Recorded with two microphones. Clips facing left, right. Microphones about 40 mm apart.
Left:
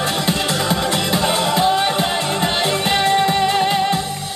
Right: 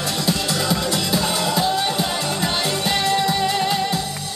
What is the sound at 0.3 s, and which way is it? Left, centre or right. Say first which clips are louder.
Music: right 1 dB; left.